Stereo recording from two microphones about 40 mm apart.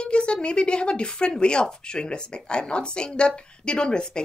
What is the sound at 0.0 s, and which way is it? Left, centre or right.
Speech, left.